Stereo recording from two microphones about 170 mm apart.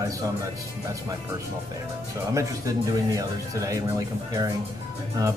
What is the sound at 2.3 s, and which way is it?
A man's voice, 20° right (ahead or behind).